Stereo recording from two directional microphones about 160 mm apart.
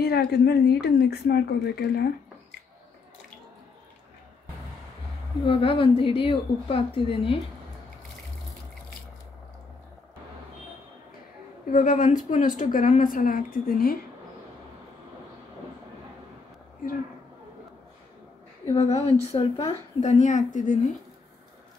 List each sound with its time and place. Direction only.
0.0 s speech: 80° left
5.5 s a woman's voice: 35° left (ahead or behind)
11.7 s a woman's voice: 55° left (ahead or behind)
18.7 s a woman's voice: 40° left (ahead or behind)